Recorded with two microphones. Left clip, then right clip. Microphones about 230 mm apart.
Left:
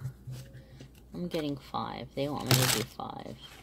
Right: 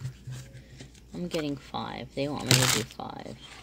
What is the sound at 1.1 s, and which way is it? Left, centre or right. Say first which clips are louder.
Speech: right 2 dB; centre.